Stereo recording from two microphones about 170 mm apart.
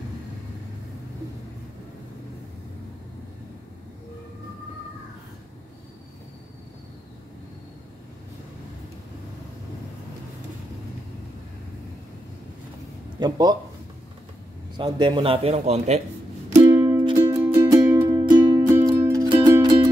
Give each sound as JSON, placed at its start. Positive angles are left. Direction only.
{"t": 13.2, "sound": "speech", "side_deg": -25}
{"t": 14.8, "sound": "a man's voice", "side_deg": -30}
{"t": 16.8, "sound": "music", "side_deg": -30}
{"t": 17.6, "sound": "music", "side_deg": -15}